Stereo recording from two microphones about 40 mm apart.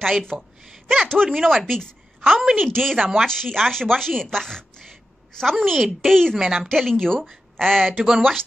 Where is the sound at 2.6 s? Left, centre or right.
Centre.